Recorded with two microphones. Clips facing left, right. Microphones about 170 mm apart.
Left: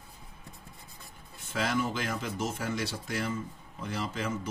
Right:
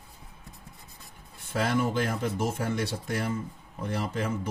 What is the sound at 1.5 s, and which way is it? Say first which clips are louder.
Speech: right 4 dB; 55° right (ahead or behind).